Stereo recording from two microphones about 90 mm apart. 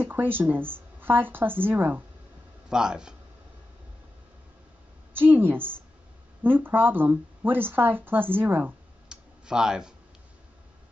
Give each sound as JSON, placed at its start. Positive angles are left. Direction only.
{"t": 0.0, "sound": "speech", "side_deg": -20}
{"t": 2.7, "sound": "speech", "side_deg": -10}
{"t": 5.1, "sound": "speech", "side_deg": -25}
{"t": 9.1, "sound": "clicking", "side_deg": -10}